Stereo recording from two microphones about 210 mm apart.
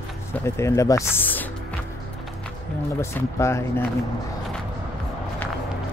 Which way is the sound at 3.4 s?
15° left (ahead or behind).